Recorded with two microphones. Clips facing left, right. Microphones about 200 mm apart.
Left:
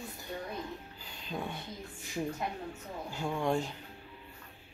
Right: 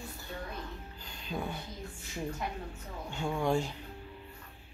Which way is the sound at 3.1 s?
Centre (ahead or behind).